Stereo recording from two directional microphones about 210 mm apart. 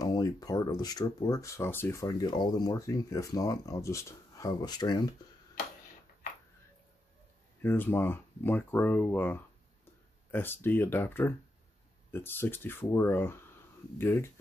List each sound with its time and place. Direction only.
0.0 s speech: 15° left (ahead or behind)
7.6 s speech: 10° left (ahead or behind)